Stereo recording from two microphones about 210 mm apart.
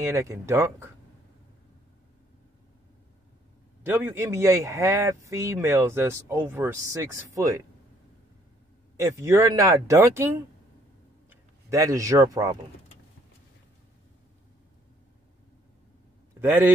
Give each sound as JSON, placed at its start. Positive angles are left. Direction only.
{"t": 0.1, "sound": "speech", "side_deg": -15}
{"t": 3.8, "sound": "speech", "side_deg": -10}
{"t": 8.9, "sound": "speech", "side_deg": -15}
{"t": 16.3, "sound": "a man's voice", "side_deg": -10}